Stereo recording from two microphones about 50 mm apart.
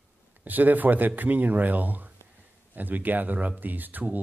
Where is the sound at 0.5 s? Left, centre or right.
Right.